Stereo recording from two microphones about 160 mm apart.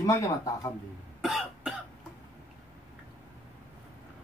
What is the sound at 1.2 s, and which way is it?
Cough, centre (ahead or behind).